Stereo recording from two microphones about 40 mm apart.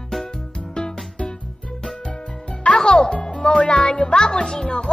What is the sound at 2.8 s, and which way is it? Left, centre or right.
Music, centre.